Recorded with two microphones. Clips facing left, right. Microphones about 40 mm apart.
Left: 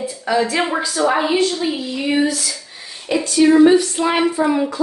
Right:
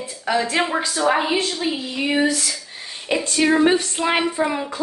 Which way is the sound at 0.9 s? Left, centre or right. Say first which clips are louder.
Left 2 dB; centre.